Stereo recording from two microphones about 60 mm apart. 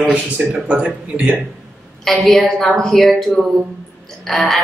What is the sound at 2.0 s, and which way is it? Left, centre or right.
A woman's voice, centre.